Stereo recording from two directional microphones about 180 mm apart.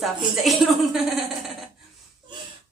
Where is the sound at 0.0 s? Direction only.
Centre (ahead or behind).